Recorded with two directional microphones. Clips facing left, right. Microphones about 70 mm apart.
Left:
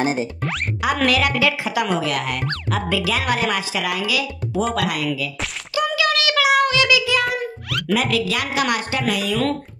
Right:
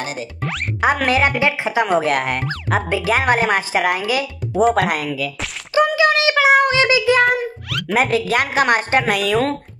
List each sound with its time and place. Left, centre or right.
0.0 s speech: left
1.0 s a woman's voice: right
2.0 s speech: right
5.8 s a sound: right
7.9 s speech: right